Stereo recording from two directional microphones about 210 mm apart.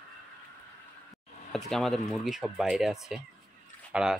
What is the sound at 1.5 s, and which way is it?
Speech, centre (ahead or behind).